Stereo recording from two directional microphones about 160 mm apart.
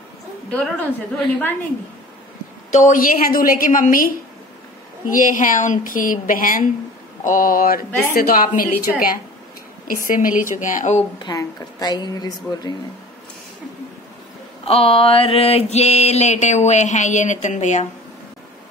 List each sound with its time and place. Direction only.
0.5 s a woman's voice: 10° left (ahead or behind)
2.7 s a woman's voice: 55° left (ahead or behind)
5.1 s a woman's voice: 55° left (ahead or behind)
10.6 s mantra: 55° left (ahead or behind)
11.1 s a woman's voice: 25° left (ahead or behind)
14.6 s mantra: 40° left (ahead or behind)